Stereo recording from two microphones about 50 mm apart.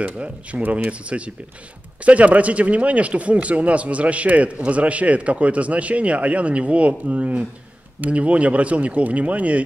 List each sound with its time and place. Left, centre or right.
0.0 s speech: right
0.6 s speech: right
0.8 s speech: right